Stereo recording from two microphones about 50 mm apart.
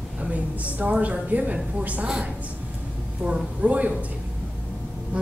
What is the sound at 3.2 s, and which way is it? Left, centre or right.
Speech, right.